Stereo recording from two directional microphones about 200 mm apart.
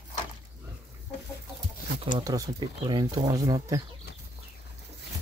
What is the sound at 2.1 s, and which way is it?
Speech, 20° right (ahead or behind).